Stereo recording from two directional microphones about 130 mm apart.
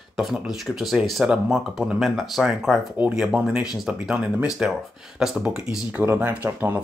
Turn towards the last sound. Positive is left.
turn(degrees=-15)  # may be behind; listen again after turning